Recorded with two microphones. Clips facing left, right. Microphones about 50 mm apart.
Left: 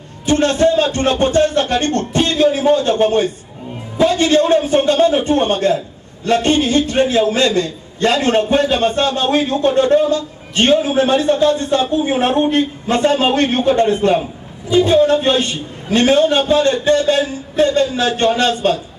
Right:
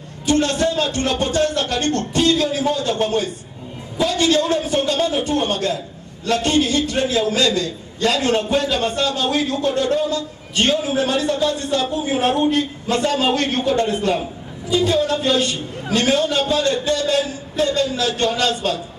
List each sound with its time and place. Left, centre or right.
0.3 s a man's voice: left